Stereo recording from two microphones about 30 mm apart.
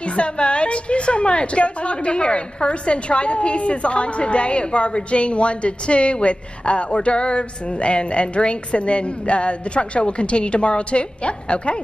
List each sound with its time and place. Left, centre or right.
0.0 s a woman's voice: left